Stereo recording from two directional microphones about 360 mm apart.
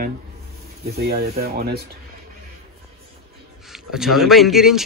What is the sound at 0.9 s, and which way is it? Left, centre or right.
Speech, right.